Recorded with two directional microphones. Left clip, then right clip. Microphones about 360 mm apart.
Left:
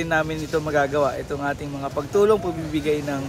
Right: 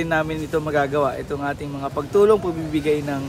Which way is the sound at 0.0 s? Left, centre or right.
Centre.